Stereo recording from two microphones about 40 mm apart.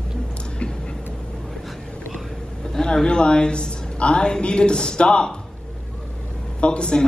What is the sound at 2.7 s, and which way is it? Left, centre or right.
A man's voice, centre.